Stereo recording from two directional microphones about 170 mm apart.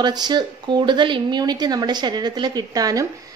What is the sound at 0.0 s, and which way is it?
A woman's voice, 25° right (ahead or behind).